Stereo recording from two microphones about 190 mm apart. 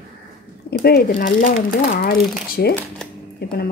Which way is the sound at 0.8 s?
50° left (ahead or behind).